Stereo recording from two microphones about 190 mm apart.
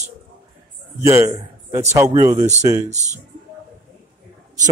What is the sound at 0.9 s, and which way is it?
A man's voice, 15° right (ahead or behind).